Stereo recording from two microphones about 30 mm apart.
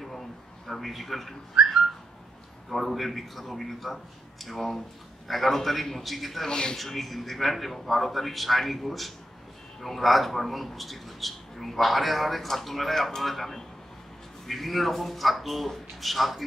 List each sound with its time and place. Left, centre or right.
0.7 s speech: centre
1.6 s whistling: centre
2.7 s speech: centre
6.5 s speech: left
6.8 s speech: centre